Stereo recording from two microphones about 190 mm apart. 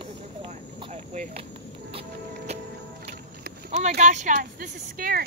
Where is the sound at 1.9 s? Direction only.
30° right (ahead or behind).